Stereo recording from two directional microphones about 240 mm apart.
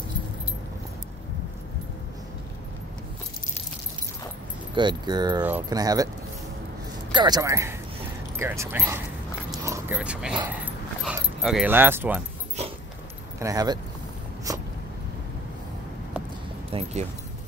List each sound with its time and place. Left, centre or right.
4.7 s speech: centre
7.1 s speech: centre
10.5 s dog: centre
13.4 s speech: centre
14.5 s a sound: centre
16.7 s speech: right